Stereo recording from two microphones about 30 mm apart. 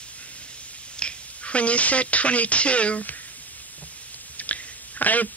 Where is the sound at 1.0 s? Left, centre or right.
Left.